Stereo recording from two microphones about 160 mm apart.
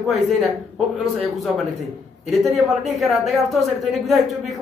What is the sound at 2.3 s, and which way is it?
A man's voice, centre (ahead or behind).